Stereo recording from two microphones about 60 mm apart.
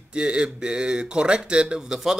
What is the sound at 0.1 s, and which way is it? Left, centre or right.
A man's voice, centre.